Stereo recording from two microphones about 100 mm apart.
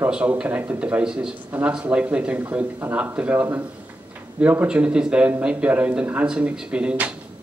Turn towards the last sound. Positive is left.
turn(degrees=-10)  # may be behind; listen again after turning